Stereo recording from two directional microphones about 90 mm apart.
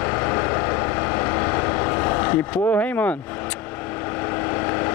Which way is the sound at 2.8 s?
20° left (ahead or behind).